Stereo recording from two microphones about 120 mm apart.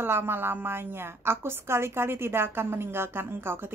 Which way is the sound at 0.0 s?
20° right (ahead or behind).